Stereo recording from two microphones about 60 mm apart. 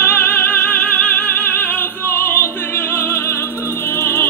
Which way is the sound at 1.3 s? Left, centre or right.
Left.